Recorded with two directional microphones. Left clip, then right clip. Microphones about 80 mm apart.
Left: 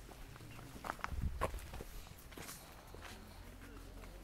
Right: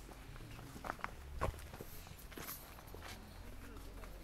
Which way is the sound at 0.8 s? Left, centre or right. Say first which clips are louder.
Left 1 dB; left.